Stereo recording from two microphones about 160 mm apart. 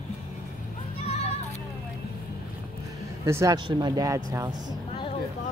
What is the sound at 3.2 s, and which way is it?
Speech, 20° right (ahead or behind).